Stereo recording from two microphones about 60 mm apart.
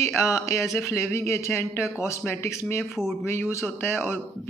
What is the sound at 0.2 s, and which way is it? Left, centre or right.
A man's voice, left.